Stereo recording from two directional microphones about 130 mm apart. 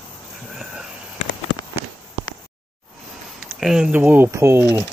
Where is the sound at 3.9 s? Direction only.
15° right (ahead or behind).